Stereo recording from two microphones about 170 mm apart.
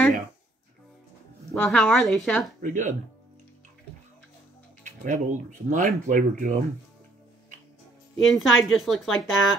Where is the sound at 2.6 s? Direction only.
50° right (ahead or behind).